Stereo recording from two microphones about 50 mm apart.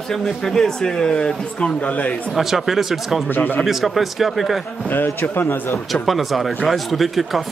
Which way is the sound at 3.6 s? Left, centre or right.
Centre.